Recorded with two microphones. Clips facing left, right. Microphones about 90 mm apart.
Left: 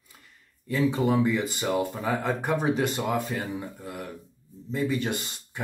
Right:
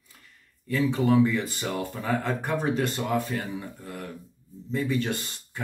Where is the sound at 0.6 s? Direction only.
15° left (ahead or behind).